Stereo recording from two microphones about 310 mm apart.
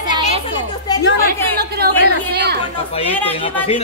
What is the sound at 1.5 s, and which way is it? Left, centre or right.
Chatter, right.